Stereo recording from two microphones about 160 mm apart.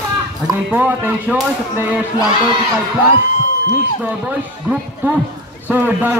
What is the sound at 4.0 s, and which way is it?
A man's voice, 10° right (ahead or behind).